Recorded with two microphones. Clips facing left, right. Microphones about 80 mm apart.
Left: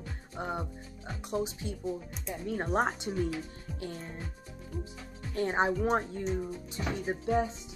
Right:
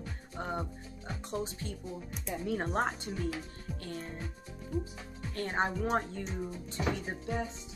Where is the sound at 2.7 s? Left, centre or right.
Centre.